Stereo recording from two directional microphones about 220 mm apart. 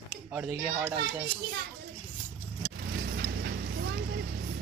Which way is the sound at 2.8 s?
50° right (ahead or behind).